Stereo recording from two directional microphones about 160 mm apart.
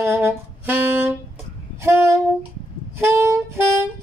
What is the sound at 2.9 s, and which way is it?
Music, 15° right (ahead or behind).